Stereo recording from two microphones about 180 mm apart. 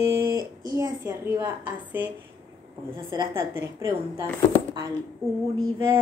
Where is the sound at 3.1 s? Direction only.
20° right (ahead or behind).